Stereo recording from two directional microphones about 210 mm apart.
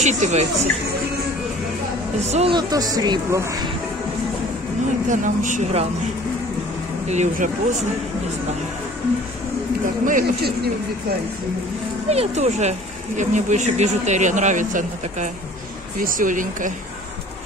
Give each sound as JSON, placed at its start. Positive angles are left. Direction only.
{"t": 0.0, "sound": "speech", "side_deg": -35}
{"t": 2.1, "sound": "speech", "side_deg": -30}
{"t": 2.5, "sound": "speech", "side_deg": -15}
{"t": 5.1, "sound": "speech", "side_deg": -35}
{"t": 7.1, "sound": "speech", "side_deg": -35}
{"t": 10.0, "sound": "speech", "side_deg": -40}
{"t": 12.1, "sound": "speech", "side_deg": -30}